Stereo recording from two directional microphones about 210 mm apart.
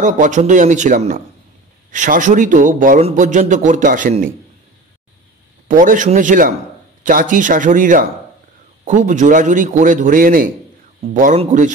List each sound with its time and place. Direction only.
0.0 s a man's voice: 35° right (ahead or behind)
5.7 s a man's voice: 40° right (ahead or behind)